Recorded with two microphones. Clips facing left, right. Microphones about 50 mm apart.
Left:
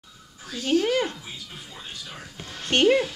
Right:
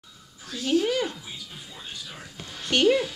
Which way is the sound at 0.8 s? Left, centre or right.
Left.